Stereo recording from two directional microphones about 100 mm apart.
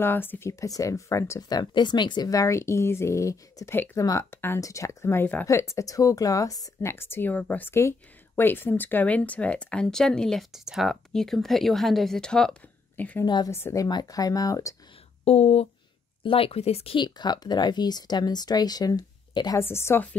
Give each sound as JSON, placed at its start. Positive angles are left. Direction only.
{"t": 0.0, "sound": "speech", "side_deg": 20}
{"t": 1.6, "sound": "a woman's voice", "side_deg": 50}
{"t": 13.2, "sound": "speech", "side_deg": 45}
{"t": 13.5, "sound": "speech", "side_deg": 25}
{"t": 13.8, "sound": "speech", "side_deg": 40}
{"t": 15.2, "sound": "speech", "side_deg": 90}
{"t": 16.3, "sound": "speech", "side_deg": 70}
{"t": 16.9, "sound": "speech", "side_deg": 50}
{"t": 19.6, "sound": "speech", "side_deg": 25}